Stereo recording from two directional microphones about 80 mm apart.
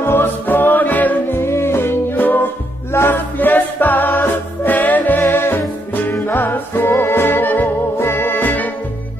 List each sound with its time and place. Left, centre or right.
0.0 s music: left
1.4 s music: left